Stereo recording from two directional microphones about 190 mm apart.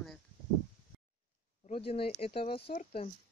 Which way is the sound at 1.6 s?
35° left (ahead or behind).